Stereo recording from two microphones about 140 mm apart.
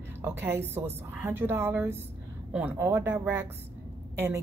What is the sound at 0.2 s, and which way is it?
A woman's voice, 15° right (ahead or behind).